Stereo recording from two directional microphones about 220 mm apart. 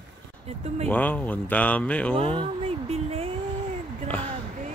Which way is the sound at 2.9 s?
25° right (ahead or behind).